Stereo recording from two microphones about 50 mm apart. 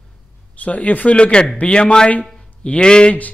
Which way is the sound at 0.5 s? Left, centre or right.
Left.